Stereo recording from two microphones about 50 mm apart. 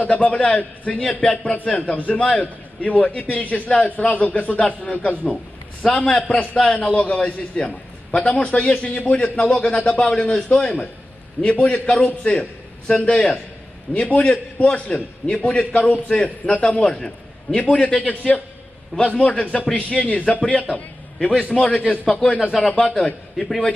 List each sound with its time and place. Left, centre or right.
0.0 s a man's voice: left
10.3 s a man's voice: centre
11.4 s a man's voice: left